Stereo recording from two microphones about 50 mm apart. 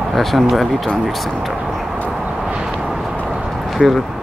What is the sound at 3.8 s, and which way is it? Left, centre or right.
Speech, centre.